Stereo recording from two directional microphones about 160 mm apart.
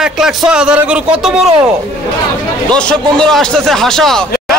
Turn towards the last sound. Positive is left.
turn(degrees=0)  # may be behind; listen again after turning